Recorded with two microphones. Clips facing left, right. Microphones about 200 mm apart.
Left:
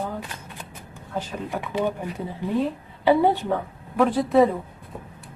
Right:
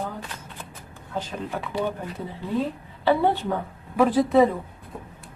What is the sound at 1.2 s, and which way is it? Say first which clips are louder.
Speech: left 1 dB; 15° left (ahead or behind).